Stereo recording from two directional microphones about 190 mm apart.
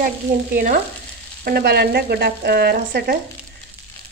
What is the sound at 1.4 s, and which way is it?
Frying, 55° right (ahead or behind).